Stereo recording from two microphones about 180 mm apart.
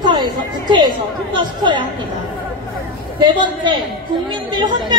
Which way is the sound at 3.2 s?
25° right (ahead or behind).